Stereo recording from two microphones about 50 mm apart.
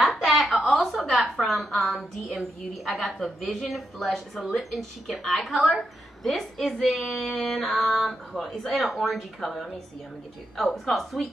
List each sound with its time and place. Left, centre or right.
0.0 s a sound: centre
2.0 s a woman's voice: right
2.8 s speech: centre